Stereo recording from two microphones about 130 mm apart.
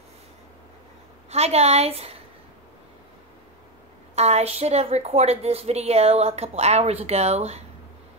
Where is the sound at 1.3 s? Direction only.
55° right (ahead or behind).